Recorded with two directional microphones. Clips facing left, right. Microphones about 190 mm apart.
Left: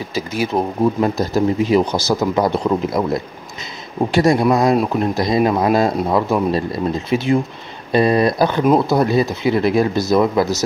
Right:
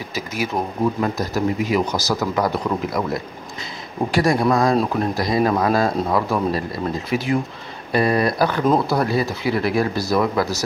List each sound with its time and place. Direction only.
0.1 s speech: 30° left (ahead or behind)